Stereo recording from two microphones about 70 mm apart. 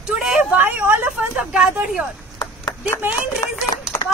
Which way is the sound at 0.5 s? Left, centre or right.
Right.